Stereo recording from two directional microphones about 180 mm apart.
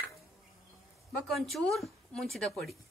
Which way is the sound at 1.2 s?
Centre (ahead or behind).